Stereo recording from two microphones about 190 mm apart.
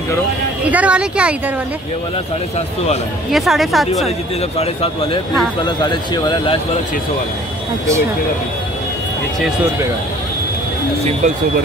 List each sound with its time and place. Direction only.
0.7 s speech: 5° right (ahead or behind)
3.3 s speech: centre (ahead or behind)
4.6 s speech: 30° left (ahead or behind)